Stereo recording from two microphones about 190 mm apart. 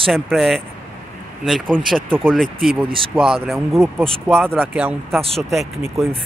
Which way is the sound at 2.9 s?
25° right (ahead or behind).